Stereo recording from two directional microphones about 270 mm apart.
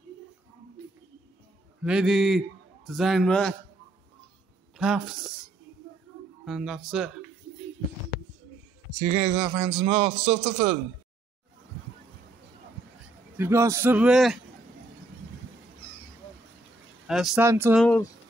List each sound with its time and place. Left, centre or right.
1.8 s a man's voice: centre
4.7 s speech: centre
6.4 s speech: centre
9.4 s a man's voice: centre
9.7 s a man's voice: right
13.4 s a man's voice: centre
17.1 s speech: centre